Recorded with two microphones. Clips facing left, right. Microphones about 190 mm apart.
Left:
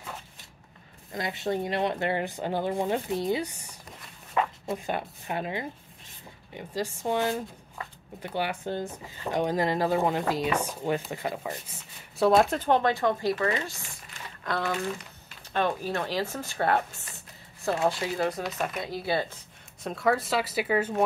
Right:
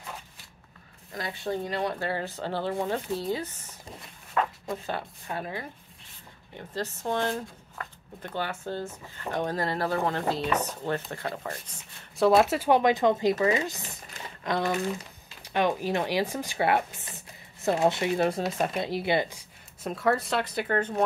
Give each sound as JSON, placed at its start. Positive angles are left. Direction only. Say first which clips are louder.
{"t": 1.4, "sound": "speech", "louder": "left 2 dB", "side_deg": 20}
{"t": 12.3, "sound": "speech", "louder": "right 1 dB", "side_deg": -5}
{"t": 19.8, "sound": "speech", "louder": "even", "side_deg": 0}